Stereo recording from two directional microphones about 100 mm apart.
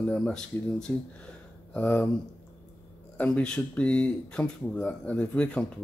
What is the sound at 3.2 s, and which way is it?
Speech, 10° left (ahead or behind).